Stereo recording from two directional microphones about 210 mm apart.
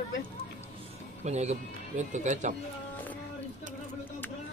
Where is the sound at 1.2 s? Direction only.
35° right (ahead or behind).